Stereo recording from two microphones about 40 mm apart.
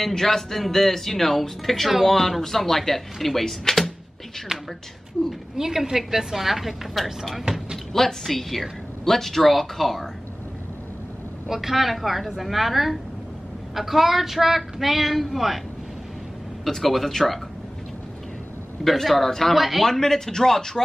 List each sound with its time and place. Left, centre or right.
0.0 s speech: centre
4.5 s a woman's voice: centre
7.4 s a sound: centre
7.9 s speech: centre
11.4 s speech: centre
16.6 s speech: centre
18.9 s speech: centre
19.9 s speech: centre